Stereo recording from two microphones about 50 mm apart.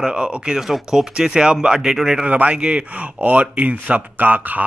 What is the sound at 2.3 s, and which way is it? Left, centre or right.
Speech, right.